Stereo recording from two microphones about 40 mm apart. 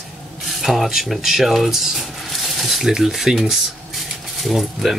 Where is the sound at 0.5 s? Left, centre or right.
Centre.